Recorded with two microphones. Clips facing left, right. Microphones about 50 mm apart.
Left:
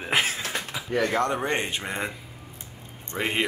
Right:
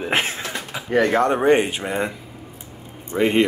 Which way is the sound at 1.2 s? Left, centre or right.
Right.